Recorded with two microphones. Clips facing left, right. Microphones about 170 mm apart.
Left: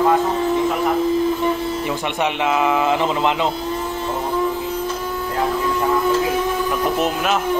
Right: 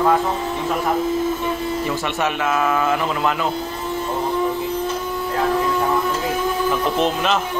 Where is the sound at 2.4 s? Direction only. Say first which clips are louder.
Left 2 dB; 20° left (ahead or behind).